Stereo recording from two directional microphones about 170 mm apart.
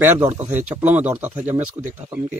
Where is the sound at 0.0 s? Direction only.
15° right (ahead or behind).